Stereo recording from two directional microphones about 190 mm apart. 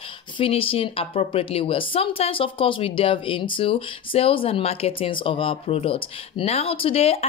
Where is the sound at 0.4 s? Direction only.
30° left (ahead or behind).